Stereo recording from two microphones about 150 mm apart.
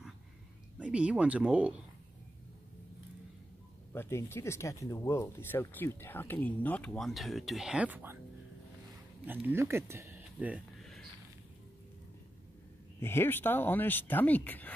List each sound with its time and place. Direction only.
0.7 s speech: 10° right (ahead or behind)
3.9 s speech: 15° left (ahead or behind); by 8.2 s 10° right (ahead or behind)
9.2 s speech: 15° right (ahead or behind)
10.8 s a sound: centre (ahead or behind)
13.0 s speech: 15° left (ahead or behind)